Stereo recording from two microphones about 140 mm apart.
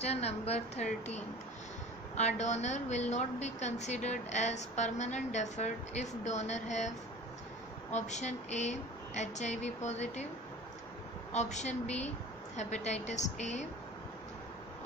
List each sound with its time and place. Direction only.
0.0 s a woman's voice: 50° left (ahead or behind)
7.9 s a woman's voice: 55° left (ahead or behind)
11.3 s a woman's voice: 55° left (ahead or behind)